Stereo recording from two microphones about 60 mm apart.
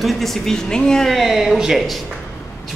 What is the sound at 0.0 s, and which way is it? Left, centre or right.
Speech, centre.